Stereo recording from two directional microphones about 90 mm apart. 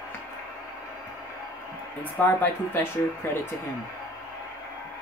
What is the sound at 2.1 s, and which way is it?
Speech, 20° left (ahead or behind).